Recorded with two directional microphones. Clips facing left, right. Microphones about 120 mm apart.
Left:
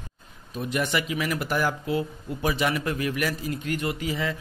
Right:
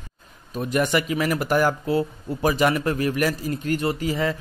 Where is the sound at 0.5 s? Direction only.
45° right (ahead or behind).